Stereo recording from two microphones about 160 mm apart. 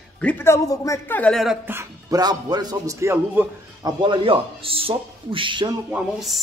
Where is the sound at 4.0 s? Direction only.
30° right (ahead or behind).